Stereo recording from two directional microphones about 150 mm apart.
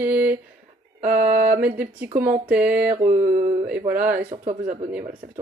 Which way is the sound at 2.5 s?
10° right (ahead or behind).